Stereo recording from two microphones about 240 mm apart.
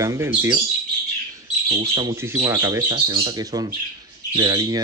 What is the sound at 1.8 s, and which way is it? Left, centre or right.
Speech, centre.